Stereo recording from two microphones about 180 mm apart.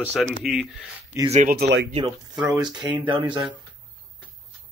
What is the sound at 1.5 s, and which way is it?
Speech, 65° right (ahead or behind).